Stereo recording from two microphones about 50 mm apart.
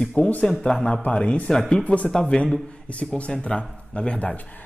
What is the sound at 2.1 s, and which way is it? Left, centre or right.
Speech, centre.